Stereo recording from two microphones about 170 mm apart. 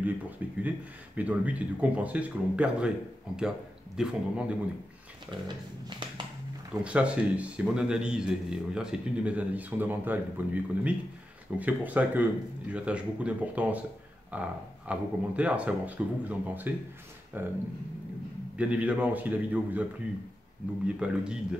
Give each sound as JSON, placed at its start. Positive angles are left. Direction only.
{"t": 0.6, "sound": "a man's voice", "side_deg": -10}
{"t": 5.9, "sound": "a sound", "side_deg": -25}
{"t": 6.7, "sound": "a man's voice", "side_deg": -5}
{"t": 18.6, "sound": "a man's voice", "side_deg": -5}